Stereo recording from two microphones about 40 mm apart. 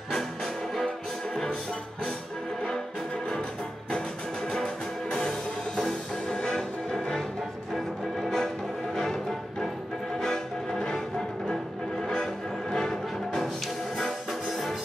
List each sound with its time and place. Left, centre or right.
1.3 s music: centre
6.2 s music: centre
12.7 s music: centre